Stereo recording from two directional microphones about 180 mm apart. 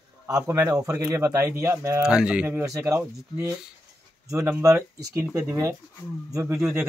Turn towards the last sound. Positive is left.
turn(degrees=-15)  # may be behind; listen again after turning